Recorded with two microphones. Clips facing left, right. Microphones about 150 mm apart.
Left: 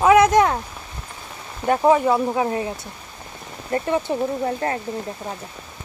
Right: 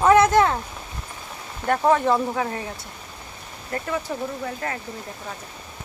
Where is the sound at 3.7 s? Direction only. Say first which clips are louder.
Left 6 dB; 25° left (ahead or behind).